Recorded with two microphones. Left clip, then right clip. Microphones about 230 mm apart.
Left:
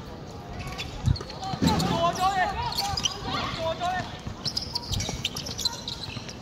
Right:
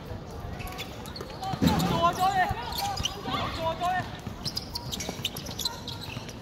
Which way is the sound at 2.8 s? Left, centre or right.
Centre.